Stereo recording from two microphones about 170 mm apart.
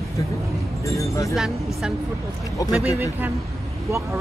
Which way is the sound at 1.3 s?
5° right (ahead or behind).